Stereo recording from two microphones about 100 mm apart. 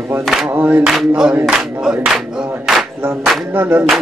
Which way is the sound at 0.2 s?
Centre (ahead or behind).